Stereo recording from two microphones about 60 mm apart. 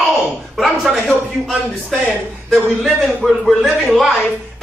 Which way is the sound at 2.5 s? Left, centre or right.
Centre.